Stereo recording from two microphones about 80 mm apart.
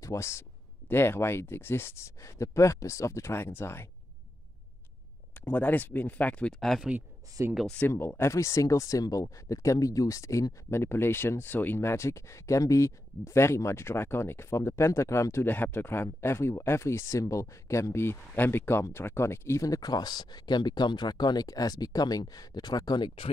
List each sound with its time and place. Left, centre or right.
0.0 s speech: left
5.4 s speech: left
6.6 s speech: centre
7.6 s speech: centre
7.9 s speech: left
10.7 s speech: left
15.5 s speech: left